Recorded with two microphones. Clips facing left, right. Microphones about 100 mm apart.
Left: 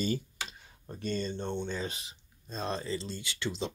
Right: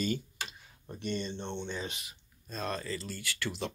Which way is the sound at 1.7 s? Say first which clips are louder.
Left 2 dB; 35° left (ahead or behind).